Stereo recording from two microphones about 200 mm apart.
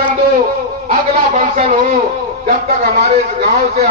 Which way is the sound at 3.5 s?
35° right (ahead or behind).